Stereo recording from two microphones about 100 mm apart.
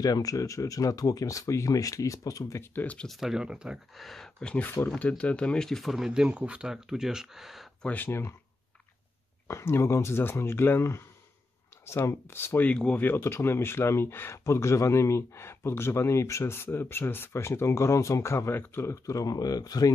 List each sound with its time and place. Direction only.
0.0 s speech: 35° left (ahead or behind)
2.7 s speech: 15° left (ahead or behind)
3.1 s speech: 5° right (ahead or behind)
7.8 s speech: 15° left (ahead or behind)
9.5 s speech: 30° left (ahead or behind)